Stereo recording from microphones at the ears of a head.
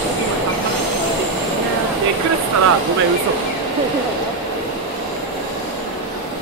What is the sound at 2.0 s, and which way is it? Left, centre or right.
Speech, right.